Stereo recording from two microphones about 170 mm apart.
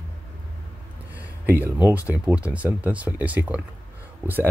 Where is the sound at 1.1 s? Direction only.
10° right (ahead or behind).